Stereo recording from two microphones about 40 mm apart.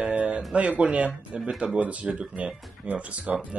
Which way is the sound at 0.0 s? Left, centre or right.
Right.